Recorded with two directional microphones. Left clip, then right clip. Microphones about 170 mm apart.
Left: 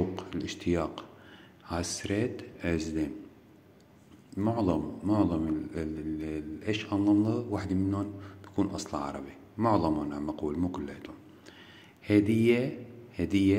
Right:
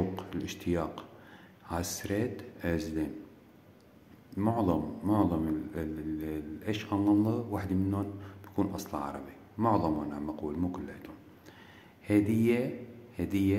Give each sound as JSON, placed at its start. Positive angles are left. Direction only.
{"t": 0.1, "sound": "a sound", "side_deg": 10}
{"t": 1.7, "sound": "a man's voice", "side_deg": 10}
{"t": 4.4, "sound": "a man's voice", "side_deg": 5}